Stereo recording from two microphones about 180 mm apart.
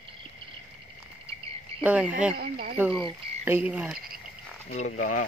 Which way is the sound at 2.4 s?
55° right (ahead or behind).